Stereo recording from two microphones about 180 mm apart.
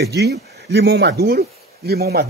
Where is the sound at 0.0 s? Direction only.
65° right (ahead or behind).